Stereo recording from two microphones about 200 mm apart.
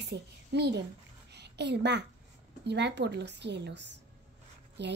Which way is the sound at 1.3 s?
60° right (ahead or behind).